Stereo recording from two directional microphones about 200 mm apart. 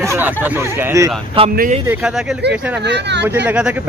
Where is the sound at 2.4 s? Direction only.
60° right (ahead or behind).